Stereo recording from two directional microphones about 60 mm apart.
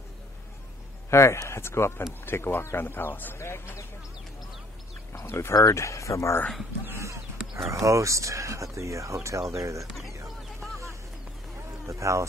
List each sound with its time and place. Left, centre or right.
1.1 s speech: left
3.3 s speech: left
5.2 s speech: left
5.5 s speech: left
7.0 s horse: right
7.7 s speech: right
11.8 s speech: right